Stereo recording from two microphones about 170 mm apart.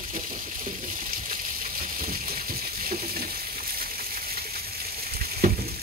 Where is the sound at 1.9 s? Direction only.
60° right (ahead or behind).